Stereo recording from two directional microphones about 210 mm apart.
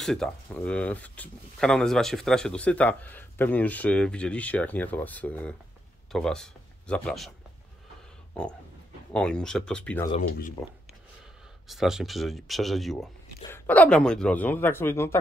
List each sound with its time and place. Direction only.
0.0 s speech: centre (ahead or behind)
9.1 s speech: 5° left (ahead or behind)
10.2 s speech: 40° left (ahead or behind)
11.6 s speech: centre (ahead or behind)